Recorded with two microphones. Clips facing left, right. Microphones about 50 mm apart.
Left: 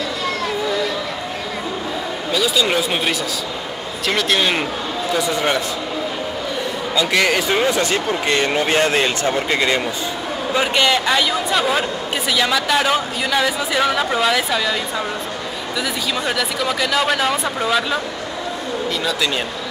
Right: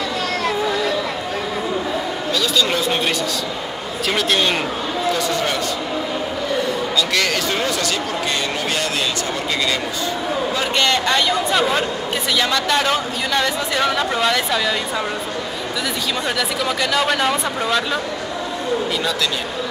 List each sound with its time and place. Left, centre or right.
2.3 s a sound: centre
4.1 s speech: centre
5.1 s speech: centre
7.0 s speech: centre
8.3 s speech: left
10.5 s a man's voice: centre
10.9 s speech: centre
16.3 s speech: centre